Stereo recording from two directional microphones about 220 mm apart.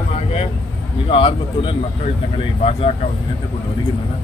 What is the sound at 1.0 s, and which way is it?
Speech, 25° left (ahead or behind).